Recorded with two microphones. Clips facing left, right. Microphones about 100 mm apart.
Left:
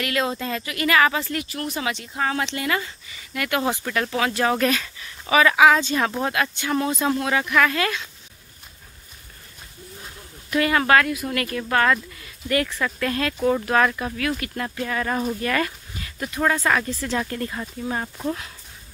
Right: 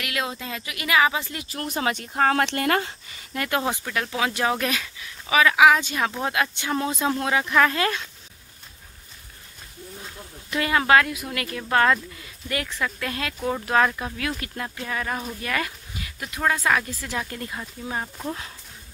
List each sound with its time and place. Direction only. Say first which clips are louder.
0.0 s speech: left 5 dB; 5° right (ahead or behind)
1.5 s speech: right 1 dB; 35° right (ahead or behind)
3.3 s speech: left 1 dB; 30° right (ahead or behind)
3.8 s speech: left 4 dB; 5° right (ahead or behind)
4.2 s speech: left 3 dB; 15° right (ahead or behind)
10.5 s speech: left 1 dB; 20° right (ahead or behind)
13.4 s speech: left 6 dB; centre (ahead or behind)
13.7 s speech: left 1 dB; 15° right (ahead or behind)
14.8 s speech: left 5 dB; 5° right (ahead or behind)